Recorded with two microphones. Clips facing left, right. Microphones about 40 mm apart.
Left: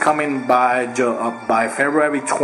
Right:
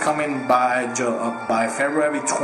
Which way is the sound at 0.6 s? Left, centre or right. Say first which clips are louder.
Left 4 dB; centre.